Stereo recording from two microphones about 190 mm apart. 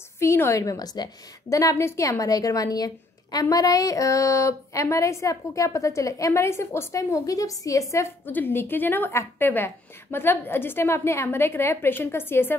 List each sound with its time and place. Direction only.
0.2 s a woman's voice: 15° left (ahead or behind)